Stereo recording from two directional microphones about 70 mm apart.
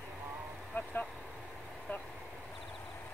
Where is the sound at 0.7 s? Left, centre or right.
Centre.